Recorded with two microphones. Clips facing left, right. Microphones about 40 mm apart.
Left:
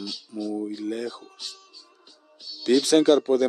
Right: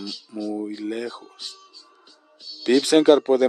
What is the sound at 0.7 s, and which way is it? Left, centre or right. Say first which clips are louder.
Speech: right 1 dB; right.